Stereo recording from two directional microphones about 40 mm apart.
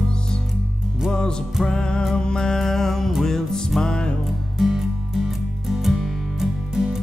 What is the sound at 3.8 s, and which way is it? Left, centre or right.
Music, left.